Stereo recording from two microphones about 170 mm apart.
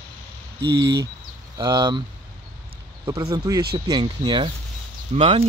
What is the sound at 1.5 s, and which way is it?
Speech, 25° right (ahead or behind).